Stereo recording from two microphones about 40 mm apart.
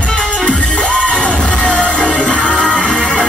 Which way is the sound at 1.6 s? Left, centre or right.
Left.